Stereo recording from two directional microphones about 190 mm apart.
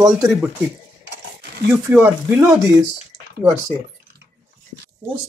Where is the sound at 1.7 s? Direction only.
10° right (ahead or behind).